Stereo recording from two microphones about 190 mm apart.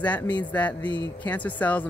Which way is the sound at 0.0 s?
5° left (ahead or behind).